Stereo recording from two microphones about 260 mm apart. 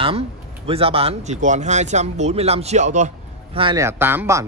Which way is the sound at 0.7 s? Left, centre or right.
Right.